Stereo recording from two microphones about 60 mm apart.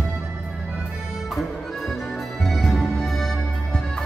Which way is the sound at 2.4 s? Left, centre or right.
Centre.